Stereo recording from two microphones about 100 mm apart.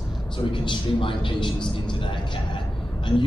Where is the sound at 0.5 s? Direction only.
55° left (ahead or behind).